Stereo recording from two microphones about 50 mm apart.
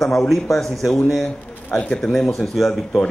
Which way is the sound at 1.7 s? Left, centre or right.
Left.